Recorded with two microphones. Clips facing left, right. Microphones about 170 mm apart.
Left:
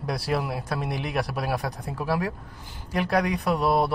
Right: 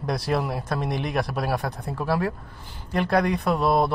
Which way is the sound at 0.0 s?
10° left (ahead or behind).